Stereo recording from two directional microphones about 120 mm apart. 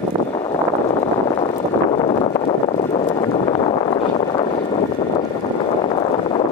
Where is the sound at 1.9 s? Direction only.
55° left (ahead or behind).